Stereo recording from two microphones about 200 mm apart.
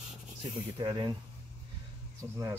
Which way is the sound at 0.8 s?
20° right (ahead or behind).